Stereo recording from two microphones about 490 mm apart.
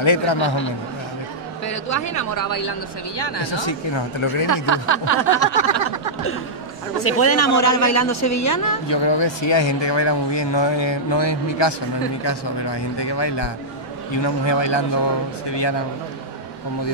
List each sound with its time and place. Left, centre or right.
0.0 s speech: left
1.7 s speech: left
3.2 s speech: left
4.6 s a sound: left
7.0 s speech: left
8.8 s speech: left